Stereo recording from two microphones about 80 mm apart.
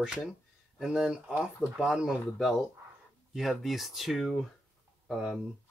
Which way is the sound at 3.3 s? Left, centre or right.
Centre.